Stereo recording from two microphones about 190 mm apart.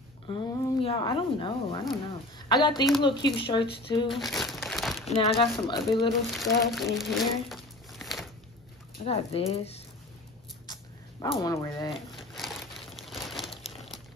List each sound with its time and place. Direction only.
0.3 s speech: 25° left (ahead or behind)
4.2 s crumpling: centre (ahead or behind)
5.0 s speech: 25° left (ahead or behind)
6.3 s speech: centre (ahead or behind)
9.0 s speech: 30° left (ahead or behind)
10.7 s cat: 20° left (ahead or behind)
12.4 s crumpling: centre (ahead or behind)